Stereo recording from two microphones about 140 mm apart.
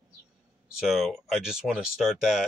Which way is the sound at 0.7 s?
5° right (ahead or behind).